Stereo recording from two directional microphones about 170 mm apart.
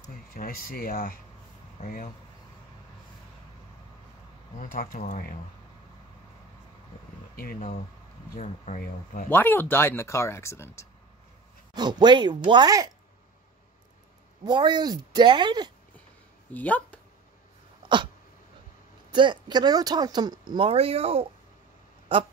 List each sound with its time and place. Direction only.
0.3 s speech: 60° left (ahead or behind)
4.6 s speech: 50° left (ahead or behind)
7.3 s speech: 60° left (ahead or behind)
8.4 s speech: 50° left (ahead or behind)
9.3 s speech: 10° left (ahead or behind)
11.7 s speech: 25° right (ahead or behind)
14.4 s speech: 25° right (ahead or behind)
16.5 s speech: 10° left (ahead or behind)
19.1 s speech: 25° right (ahead or behind)